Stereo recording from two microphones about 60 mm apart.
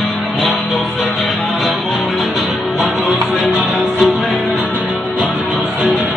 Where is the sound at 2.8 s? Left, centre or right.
Centre.